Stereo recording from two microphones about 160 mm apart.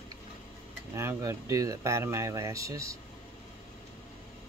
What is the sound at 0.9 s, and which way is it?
Speech, 20° right (ahead or behind).